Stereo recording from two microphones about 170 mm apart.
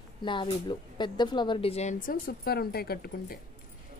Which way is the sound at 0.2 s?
30° left (ahead or behind).